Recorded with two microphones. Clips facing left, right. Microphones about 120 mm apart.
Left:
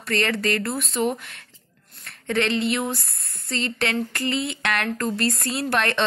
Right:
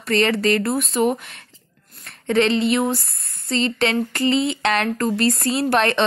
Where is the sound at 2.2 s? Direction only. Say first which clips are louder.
Right 5 dB; 25° right (ahead or behind).